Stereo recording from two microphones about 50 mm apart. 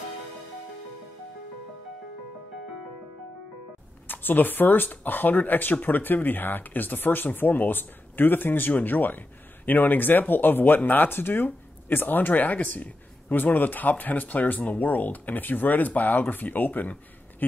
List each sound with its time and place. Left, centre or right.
4.1 s speech: left